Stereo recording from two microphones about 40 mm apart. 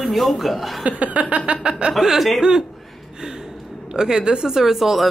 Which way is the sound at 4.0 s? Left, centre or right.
Centre.